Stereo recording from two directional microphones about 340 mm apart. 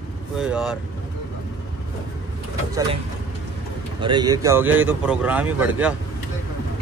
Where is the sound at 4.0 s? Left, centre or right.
Centre.